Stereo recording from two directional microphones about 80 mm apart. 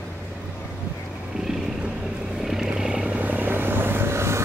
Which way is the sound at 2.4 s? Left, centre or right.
Centre.